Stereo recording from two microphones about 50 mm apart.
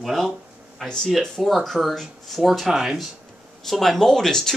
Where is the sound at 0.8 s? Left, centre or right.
Centre.